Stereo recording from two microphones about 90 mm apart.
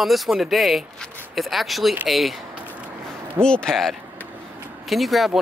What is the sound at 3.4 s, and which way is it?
Speech, 10° left (ahead or behind).